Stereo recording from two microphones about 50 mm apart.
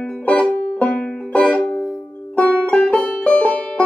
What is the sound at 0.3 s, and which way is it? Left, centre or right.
Music, left.